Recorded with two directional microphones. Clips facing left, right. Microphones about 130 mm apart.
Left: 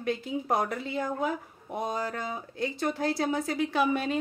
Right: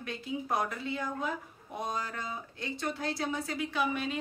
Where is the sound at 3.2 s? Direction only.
35° left (ahead or behind).